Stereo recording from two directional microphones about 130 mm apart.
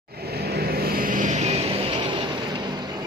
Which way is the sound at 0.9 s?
90° right.